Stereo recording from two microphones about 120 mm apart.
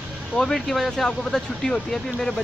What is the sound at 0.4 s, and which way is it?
Speech, 5° left (ahead or behind).